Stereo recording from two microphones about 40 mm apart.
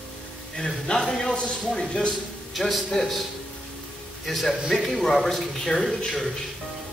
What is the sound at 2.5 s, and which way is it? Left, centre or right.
Speech, centre.